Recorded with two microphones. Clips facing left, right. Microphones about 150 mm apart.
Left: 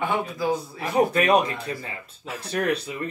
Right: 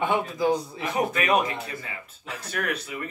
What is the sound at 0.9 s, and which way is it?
Speech, 35° left (ahead or behind).